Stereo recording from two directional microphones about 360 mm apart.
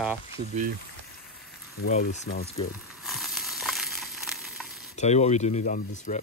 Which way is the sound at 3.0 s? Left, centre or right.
Centre.